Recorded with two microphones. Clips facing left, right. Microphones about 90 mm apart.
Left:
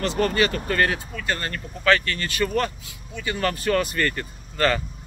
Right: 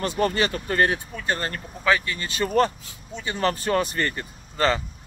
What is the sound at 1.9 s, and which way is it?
Speech, 15° right (ahead or behind).